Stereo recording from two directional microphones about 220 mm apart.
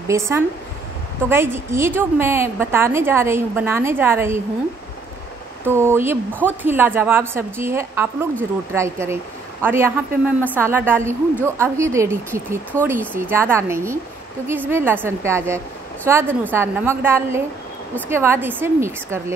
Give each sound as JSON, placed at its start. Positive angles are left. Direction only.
{"t": 0.1, "sound": "a woman's voice", "side_deg": -15}
{"t": 5.7, "sound": "a woman's voice", "side_deg": -10}